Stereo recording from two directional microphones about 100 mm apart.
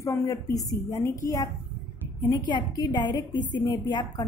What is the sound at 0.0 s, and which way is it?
A woman's voice, 30° left (ahead or behind).